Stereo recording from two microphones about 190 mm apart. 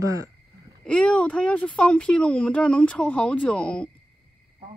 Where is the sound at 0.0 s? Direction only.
15° right (ahead or behind).